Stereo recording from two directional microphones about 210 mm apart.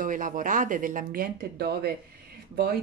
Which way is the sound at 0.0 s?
40° right (ahead or behind).